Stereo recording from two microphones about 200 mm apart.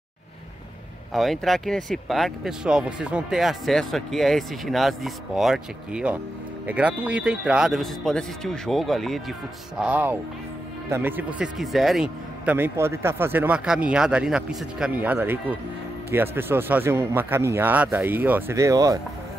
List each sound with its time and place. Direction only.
1.1 s speech: centre (ahead or behind); by 18.9 s 15° right (ahead or behind)